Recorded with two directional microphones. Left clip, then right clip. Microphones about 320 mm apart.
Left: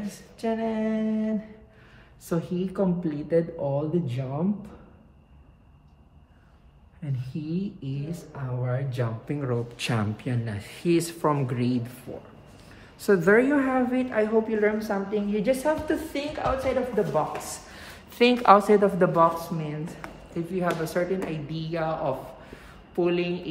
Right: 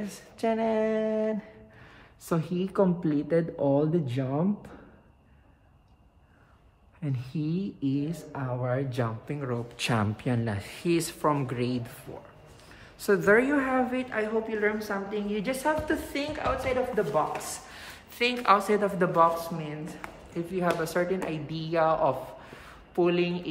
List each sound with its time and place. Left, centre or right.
0.4 s speech: right
7.0 s speech: right; by 12.0 s centre
13.0 s a woman's voice: centre